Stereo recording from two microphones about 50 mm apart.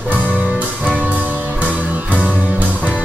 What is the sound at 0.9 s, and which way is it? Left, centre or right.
Music, right.